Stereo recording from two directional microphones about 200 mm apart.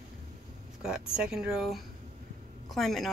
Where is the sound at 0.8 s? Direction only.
5° right (ahead or behind).